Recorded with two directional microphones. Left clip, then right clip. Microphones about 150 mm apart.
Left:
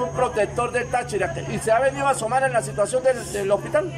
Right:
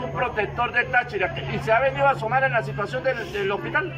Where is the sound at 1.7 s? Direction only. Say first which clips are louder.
Even; 30° left (ahead or behind).